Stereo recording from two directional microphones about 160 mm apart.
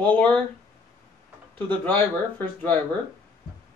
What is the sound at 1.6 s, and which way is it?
Speech, 10° left (ahead or behind).